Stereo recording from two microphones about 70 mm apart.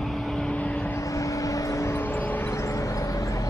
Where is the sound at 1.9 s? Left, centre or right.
Left.